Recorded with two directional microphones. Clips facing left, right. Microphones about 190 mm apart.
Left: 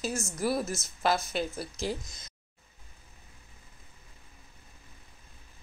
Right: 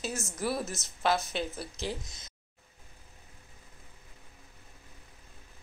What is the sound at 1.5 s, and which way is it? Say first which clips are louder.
Speech: left 3 dB; 45° left (ahead or behind).